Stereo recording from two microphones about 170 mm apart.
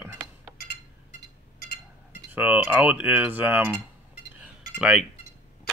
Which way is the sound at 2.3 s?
10° right (ahead or behind).